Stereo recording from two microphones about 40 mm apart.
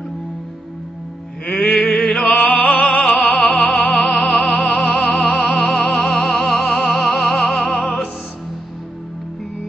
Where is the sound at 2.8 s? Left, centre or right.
Centre.